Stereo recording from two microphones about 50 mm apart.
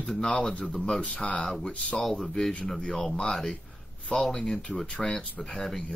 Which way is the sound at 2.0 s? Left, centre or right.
Centre.